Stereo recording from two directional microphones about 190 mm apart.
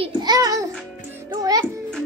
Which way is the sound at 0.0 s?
20° right (ahead or behind).